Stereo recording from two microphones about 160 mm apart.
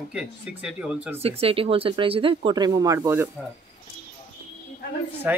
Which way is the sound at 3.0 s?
15° right (ahead or behind).